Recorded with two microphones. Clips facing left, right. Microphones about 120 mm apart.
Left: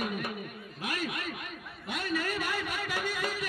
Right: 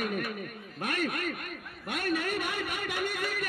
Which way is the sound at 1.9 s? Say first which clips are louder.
Right 2 dB; 55° right (ahead or behind).